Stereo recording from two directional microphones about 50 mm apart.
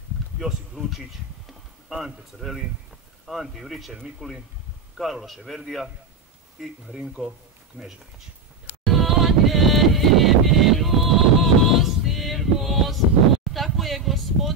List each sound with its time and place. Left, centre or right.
0.4 s speech: centre
6.9 s speech: right
8.8 s a sound: centre